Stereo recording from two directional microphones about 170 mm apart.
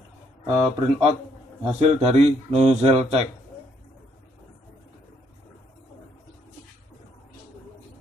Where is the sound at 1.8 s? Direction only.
40° right (ahead or behind).